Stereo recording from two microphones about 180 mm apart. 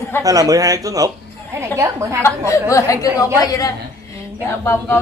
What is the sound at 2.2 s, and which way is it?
A woman's voice, 15° left (ahead or behind).